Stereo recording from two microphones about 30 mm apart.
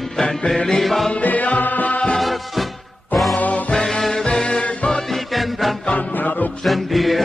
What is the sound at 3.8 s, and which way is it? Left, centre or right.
Music, centre.